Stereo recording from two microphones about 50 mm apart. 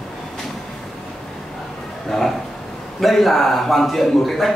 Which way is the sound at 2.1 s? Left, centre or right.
Centre.